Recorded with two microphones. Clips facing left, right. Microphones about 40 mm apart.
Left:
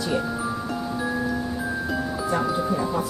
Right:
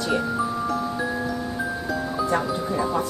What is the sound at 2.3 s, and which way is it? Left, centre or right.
Speech, centre.